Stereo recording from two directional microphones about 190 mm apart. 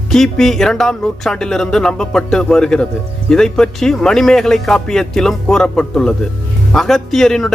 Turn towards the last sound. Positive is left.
turn(degrees=0)  # may be behind; listen again after turning